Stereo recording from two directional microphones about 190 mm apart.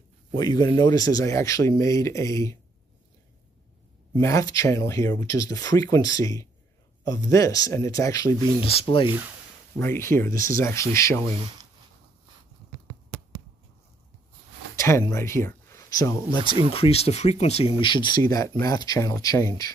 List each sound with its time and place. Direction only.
0.4 s speech: 20° left (ahead or behind)
4.2 s speech: 15° left (ahead or behind)
8.6 s speech: 25° left (ahead or behind)
9.8 s speech: 15° left (ahead or behind)
14.8 s speech: 15° left (ahead or behind)
16.3 s speech: 25° right (ahead or behind)
16.7 s speech: 30° left (ahead or behind)